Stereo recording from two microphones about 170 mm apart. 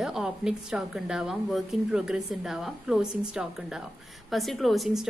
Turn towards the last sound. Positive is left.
turn(degrees=0)  # may be behind; listen again after turning